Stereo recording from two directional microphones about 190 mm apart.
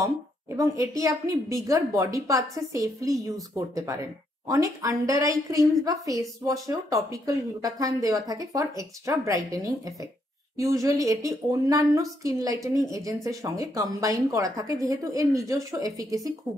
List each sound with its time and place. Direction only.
0.0 s a woman's voice: 15° right (ahead or behind)